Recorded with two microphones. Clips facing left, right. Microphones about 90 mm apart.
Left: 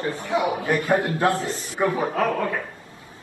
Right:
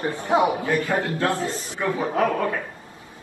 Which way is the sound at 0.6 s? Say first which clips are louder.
Left 2 dB; 20° left (ahead or behind).